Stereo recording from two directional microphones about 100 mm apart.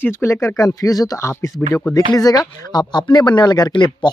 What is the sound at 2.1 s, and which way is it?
Speech, 40° left (ahead or behind).